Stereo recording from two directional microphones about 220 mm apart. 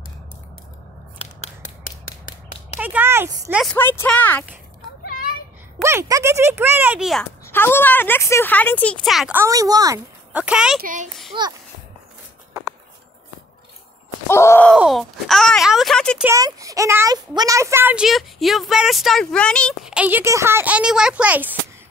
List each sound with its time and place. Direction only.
1.1 s scissors: 30° left (ahead or behind)
2.8 s a child's voice: 10° right (ahead or behind)
3.7 s speech: 10° left (ahead or behind)
5.8 s a child's voice: 10° right (ahead or behind)
7.4 s speech: 10° left (ahead or behind); by 10.4 s 15° right (ahead or behind)
10.4 s speech: 5° right (ahead or behind)
10.8 s a child's voice: 35° right (ahead or behind)
11.3 s a child's voice: 20° right (ahead or behind)
14.2 s groan: 10° left (ahead or behind)
14.7 s speech: centre (ahead or behind)
16.3 s a child's voice: 15° right (ahead or behind)